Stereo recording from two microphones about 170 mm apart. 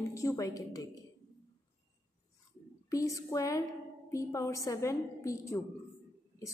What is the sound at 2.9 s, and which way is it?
A woman's voice, 20° left (ahead or behind).